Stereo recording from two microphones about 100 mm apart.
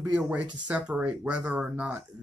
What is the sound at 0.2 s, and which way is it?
Speech, 15° right (ahead or behind).